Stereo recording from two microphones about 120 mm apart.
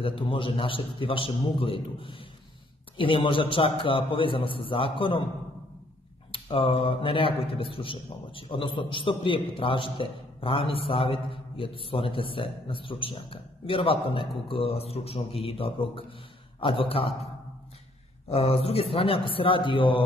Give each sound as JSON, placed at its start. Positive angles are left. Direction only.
{"t": 0.0, "sound": "a man's voice", "side_deg": 45}
{"t": 6.3, "sound": "a man's voice", "side_deg": 50}
{"t": 18.3, "sound": "a man's voice", "side_deg": 55}